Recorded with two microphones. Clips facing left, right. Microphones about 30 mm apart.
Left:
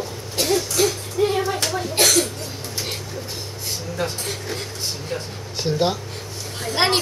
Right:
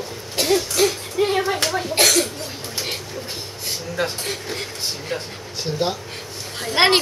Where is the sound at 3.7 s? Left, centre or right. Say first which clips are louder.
Right 2 dB; right.